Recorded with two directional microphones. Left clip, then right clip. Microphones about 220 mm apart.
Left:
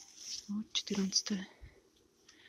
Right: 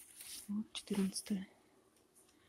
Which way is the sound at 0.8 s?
5° right (ahead or behind).